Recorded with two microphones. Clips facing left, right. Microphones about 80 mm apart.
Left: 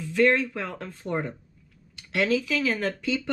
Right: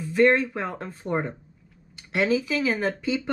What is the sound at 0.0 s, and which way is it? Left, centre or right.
Speech, centre.